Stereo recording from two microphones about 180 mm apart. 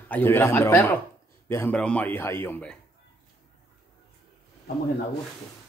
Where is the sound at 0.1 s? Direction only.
10° left (ahead or behind).